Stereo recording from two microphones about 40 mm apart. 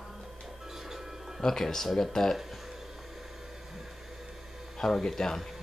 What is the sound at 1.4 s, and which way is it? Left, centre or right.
Speech, centre.